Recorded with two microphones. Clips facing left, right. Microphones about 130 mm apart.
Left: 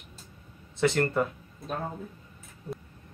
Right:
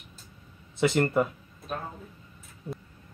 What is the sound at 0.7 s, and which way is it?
Speech, 15° right (ahead or behind).